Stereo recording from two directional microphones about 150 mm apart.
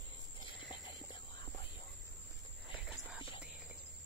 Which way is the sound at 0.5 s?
30° left (ahead or behind).